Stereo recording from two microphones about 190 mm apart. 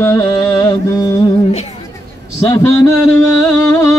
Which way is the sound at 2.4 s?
15° left (ahead or behind).